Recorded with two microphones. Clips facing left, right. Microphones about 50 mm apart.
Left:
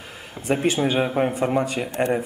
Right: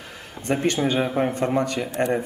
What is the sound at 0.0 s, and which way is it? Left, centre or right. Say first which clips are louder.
A man's voice: even; centre.